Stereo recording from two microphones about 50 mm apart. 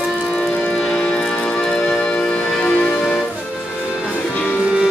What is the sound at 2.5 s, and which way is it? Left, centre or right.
Music, centre.